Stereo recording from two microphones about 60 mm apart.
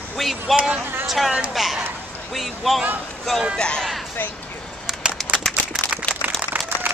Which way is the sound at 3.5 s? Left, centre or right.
Centre.